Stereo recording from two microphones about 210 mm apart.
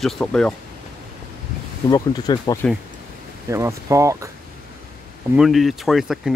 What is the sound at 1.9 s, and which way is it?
Speech, 20° left (ahead or behind).